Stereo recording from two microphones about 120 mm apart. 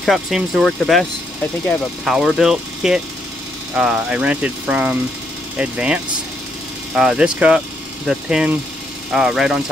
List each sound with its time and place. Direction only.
0.0 s speech: centre (ahead or behind)
7.0 s speech: 5° right (ahead or behind)